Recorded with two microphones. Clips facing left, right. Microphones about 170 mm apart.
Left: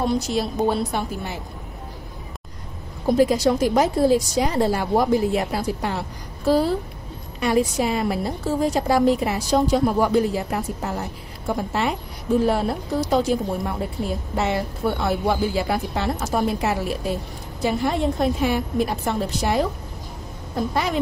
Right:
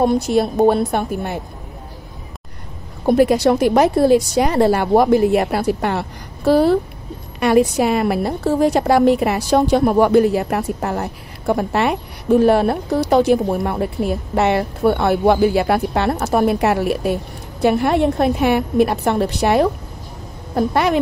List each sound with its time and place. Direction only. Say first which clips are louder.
0.0 s a woman's voice: right 7 dB; 55° right (ahead or behind)
3.1 s a woman's voice: right 4 dB; 65° right (ahead or behind)